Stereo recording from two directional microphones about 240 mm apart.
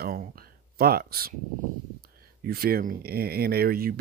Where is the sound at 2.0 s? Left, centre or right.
Right.